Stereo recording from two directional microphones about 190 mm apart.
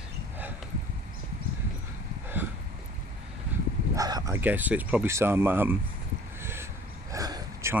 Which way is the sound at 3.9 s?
20° right (ahead or behind).